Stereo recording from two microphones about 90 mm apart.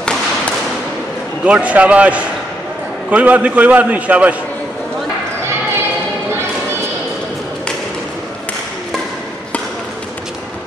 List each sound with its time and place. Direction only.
1.4 s a man's voice: 15° right (ahead or behind)